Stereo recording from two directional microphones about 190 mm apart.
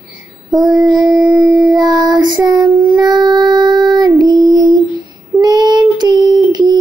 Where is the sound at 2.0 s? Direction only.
20° right (ahead or behind).